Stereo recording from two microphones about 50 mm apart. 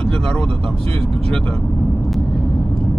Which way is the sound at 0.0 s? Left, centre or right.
Centre.